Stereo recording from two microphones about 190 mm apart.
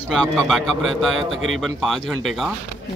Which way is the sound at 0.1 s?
5° left (ahead or behind).